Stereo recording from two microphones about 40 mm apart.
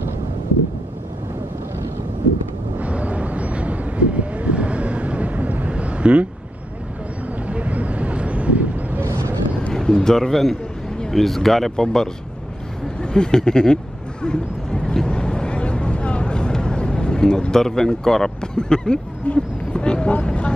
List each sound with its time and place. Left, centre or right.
2.8 s vehicle: right
5.7 s vehicle: right
7.4 s vehicle: right
9.8 s speech: centre
14.2 s a sound: left
15.0 s vehicle: left
17.6 s speech: centre; by 20.5 s left